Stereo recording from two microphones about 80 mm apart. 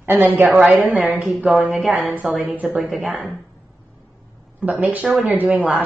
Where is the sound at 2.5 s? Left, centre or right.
Centre.